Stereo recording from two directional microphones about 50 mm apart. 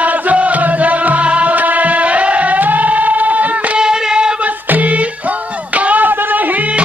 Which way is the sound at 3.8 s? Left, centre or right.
Centre.